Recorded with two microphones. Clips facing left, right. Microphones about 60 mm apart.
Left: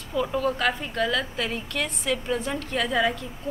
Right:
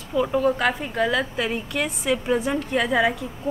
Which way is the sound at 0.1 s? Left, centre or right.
Centre.